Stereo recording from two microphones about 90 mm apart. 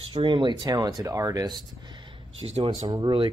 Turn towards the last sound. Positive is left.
turn(degrees=-60)  # may be behind; listen again after turning